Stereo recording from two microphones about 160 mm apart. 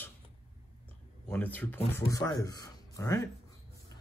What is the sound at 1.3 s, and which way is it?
Speech, 10° left (ahead or behind).